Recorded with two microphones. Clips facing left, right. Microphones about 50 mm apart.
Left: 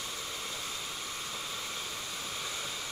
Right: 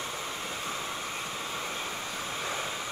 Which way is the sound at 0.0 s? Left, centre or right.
Right.